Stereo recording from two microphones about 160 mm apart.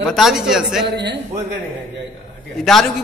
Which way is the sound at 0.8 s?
90° right.